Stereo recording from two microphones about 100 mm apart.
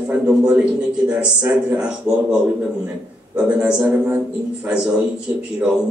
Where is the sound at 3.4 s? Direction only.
10° right (ahead or behind).